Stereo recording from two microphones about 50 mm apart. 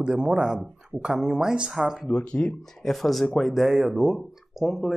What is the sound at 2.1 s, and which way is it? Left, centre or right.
Speech, centre.